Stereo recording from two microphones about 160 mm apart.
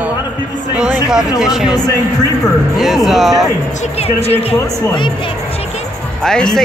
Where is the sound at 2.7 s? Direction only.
Centre (ahead or behind).